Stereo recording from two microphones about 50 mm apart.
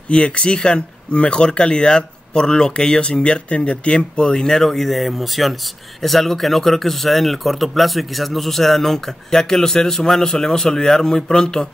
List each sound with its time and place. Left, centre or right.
0.1 s speech: centre